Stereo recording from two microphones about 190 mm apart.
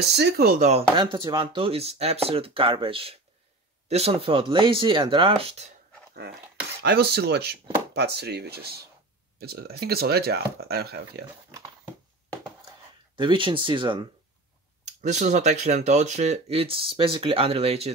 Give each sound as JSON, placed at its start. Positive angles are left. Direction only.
{"t": 0.1, "sound": "speech", "side_deg": -60}
{"t": 0.9, "sound": "speech", "side_deg": -25}
{"t": 6.8, "sound": "speech", "side_deg": -60}
{"t": 13.1, "sound": "speech", "side_deg": -25}
{"t": 15.0, "sound": "speech", "side_deg": -40}